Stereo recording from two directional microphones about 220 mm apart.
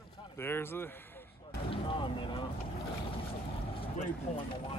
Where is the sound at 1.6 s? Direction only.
25° left (ahead or behind).